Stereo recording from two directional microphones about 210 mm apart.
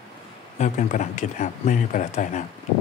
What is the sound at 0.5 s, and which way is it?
Speech, 35° left (ahead or behind).